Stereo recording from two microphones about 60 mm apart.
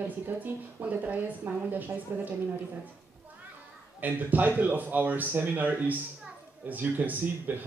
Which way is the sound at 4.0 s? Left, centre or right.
Right.